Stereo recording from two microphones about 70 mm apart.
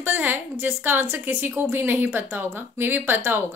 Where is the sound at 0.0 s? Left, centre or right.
Right.